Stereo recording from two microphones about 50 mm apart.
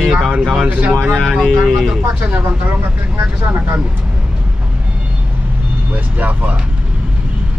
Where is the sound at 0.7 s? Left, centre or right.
Right.